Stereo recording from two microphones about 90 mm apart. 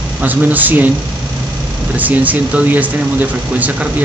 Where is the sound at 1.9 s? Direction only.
20° right (ahead or behind).